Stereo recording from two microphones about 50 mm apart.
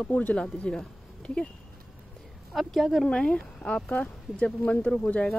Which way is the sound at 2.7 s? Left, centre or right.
Centre.